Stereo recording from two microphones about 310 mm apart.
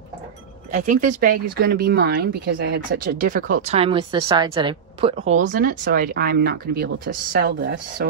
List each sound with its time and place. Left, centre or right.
0.7 s speech: right